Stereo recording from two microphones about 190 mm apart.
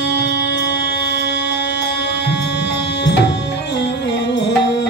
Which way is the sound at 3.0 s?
70° left (ahead or behind).